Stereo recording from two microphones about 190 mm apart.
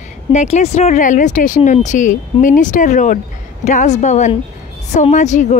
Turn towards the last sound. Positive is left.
turn(degrees=40)  # may be behind; listen again after turning